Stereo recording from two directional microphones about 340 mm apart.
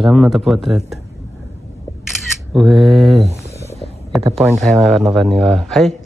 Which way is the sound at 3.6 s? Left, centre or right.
Centre.